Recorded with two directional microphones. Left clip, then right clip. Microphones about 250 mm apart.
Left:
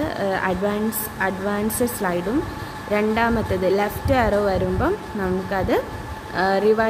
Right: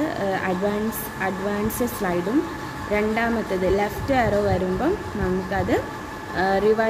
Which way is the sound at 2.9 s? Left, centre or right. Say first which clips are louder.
Left 3 dB; centre.